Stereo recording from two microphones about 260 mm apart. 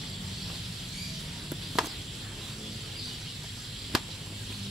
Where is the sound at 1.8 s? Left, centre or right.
Centre.